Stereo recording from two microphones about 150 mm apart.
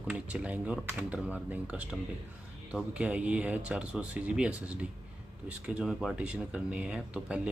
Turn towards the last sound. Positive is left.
turn(degrees=-10)  # may be behind; listen again after turning